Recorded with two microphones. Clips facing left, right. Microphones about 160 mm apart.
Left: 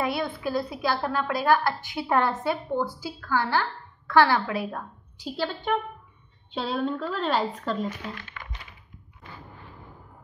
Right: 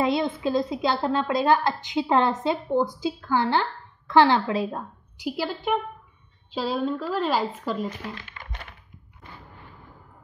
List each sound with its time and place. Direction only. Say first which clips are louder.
0.0 s a woman's voice: right 4 dB; 20° right (ahead or behind); by 7.8 s 5° right (ahead or behind)